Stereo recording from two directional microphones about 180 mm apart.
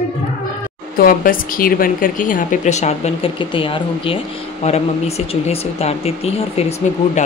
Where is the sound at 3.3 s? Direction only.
30° left (ahead or behind).